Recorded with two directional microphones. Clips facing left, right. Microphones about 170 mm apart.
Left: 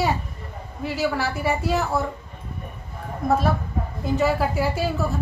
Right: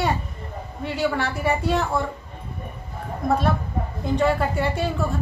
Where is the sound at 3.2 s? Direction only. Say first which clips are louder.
Left 1 dB; centre (ahead or behind).